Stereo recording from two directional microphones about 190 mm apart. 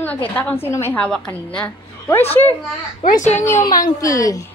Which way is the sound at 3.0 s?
40° left (ahead or behind).